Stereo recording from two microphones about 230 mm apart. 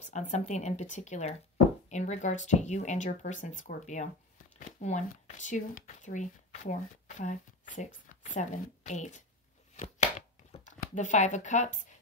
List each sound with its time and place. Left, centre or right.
0.1 s speech: left
9.8 s chopping: left